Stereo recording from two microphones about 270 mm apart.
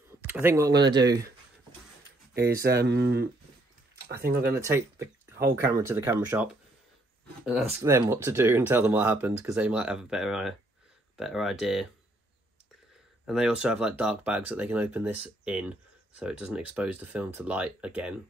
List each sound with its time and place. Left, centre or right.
0.3 s speech: centre
2.3 s speech: right
4.6 s speech: centre
7.8 s speech: centre
13.2 s speech: centre